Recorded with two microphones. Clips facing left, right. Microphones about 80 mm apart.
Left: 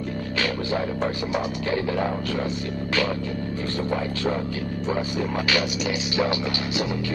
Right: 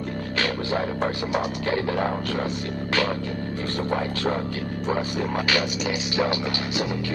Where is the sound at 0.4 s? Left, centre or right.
Right.